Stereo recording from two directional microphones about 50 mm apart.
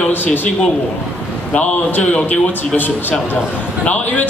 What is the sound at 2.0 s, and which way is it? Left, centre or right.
Speech, left.